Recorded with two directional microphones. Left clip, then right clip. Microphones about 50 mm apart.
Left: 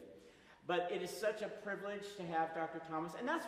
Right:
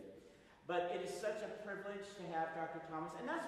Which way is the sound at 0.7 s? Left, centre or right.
Centre.